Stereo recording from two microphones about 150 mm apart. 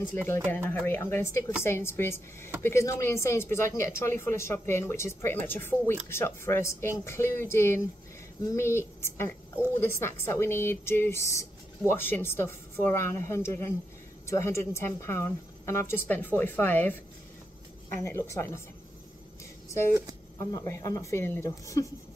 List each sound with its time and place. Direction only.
0.0 s a woman's voice: 15° left (ahead or behind)
18.0 s speech: 20° left (ahead or behind)
20.3 s speech: 20° left (ahead or behind)